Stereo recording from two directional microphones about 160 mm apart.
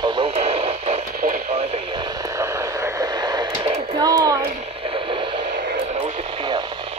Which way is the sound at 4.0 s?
25° right (ahead or behind).